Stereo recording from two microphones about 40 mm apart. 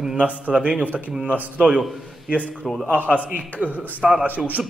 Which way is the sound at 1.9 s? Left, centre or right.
Centre.